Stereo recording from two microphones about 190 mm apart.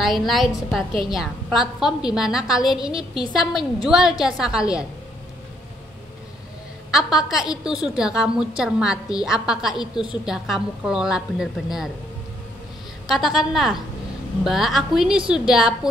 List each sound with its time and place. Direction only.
0.0 s a woman's voice: centre (ahead or behind)
6.9 s a woman's voice: centre (ahead or behind)
13.1 s a woman's voice: centre (ahead or behind)